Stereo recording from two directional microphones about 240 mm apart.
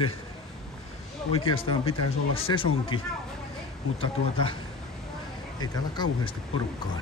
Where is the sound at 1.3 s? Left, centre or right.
Left.